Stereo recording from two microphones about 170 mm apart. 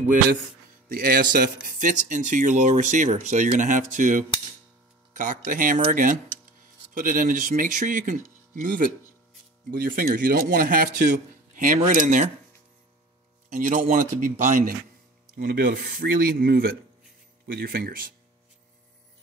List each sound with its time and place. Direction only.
0.8 s speech: 60° right (ahead or behind)
13.5 s speech: 50° right (ahead or behind)
15.3 s speech: 65° right (ahead or behind)